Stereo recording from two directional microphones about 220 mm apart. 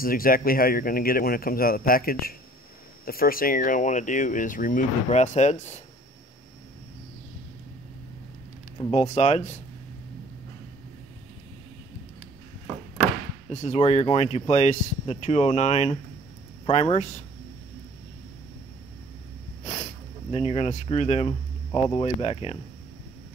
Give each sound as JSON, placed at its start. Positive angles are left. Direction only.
{"t": 0.0, "sound": "speech", "side_deg": 40}
{"t": 8.7, "sound": "speech", "side_deg": 30}
{"t": 13.5, "sound": "speech", "side_deg": 30}
{"t": 19.6, "sound": "speech", "side_deg": 30}